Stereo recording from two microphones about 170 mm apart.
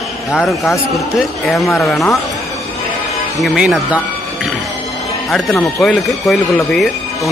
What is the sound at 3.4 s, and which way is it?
Music, centre (ahead or behind).